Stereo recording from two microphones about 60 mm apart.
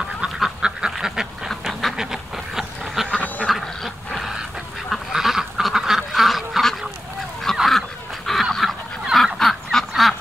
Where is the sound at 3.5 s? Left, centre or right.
Centre.